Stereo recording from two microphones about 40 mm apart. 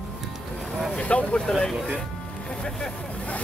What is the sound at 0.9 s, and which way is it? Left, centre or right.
Speech, left.